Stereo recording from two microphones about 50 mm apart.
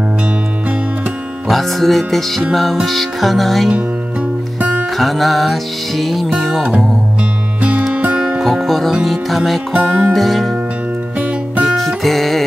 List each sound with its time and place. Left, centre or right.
1.5 s music: centre
4.9 s music: centre
7.9 s music: right
8.4 s music: centre
9.7 s music: centre
10.1 s music: centre
11.6 s music: centre